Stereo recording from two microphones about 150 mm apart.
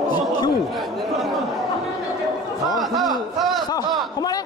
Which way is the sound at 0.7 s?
Centre (ahead or behind).